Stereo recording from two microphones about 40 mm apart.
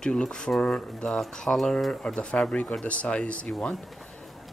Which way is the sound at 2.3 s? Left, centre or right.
Left.